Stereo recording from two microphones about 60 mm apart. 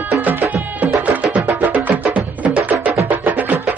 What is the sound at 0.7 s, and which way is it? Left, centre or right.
Music, right.